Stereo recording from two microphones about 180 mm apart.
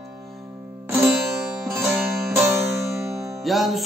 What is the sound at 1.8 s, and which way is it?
Music, centre (ahead or behind).